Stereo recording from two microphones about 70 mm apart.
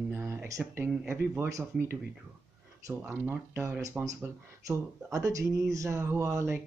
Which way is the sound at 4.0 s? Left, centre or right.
Centre.